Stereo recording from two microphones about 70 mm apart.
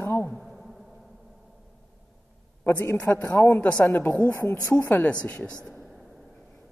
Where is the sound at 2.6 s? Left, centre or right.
Left; by 5.9 s centre.